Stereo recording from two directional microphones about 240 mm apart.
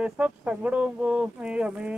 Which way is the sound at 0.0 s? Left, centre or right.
Centre.